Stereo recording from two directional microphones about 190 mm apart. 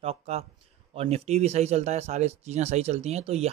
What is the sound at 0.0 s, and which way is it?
Speech, 35° right (ahead or behind).